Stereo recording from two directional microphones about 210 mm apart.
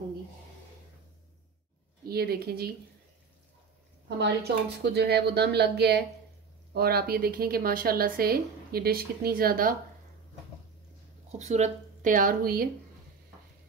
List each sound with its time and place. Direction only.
2.0 s speech: 45° right (ahead or behind)
4.2 s speech: 50° right (ahead or behind)
11.3 s speech: 35° right (ahead or behind)